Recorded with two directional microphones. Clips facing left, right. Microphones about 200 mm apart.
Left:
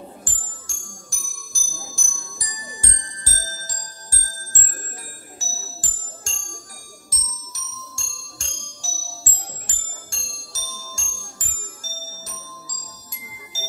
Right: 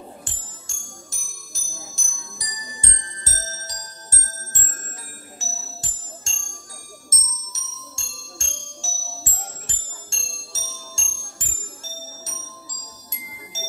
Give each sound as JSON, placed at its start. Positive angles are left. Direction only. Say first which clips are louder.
{"t": 0.2, "sound": "music", "louder": "left 1 dB", "side_deg": -25}